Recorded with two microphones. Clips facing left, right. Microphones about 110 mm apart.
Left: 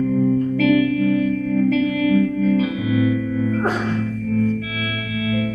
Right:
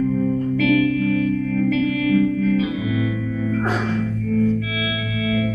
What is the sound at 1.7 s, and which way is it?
Music, 40° left (ahead or behind).